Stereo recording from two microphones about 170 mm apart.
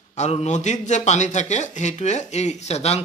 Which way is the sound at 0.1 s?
40° left (ahead or behind).